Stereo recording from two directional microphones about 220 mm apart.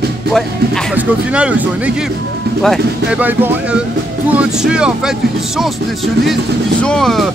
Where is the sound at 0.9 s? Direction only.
5° right (ahead or behind).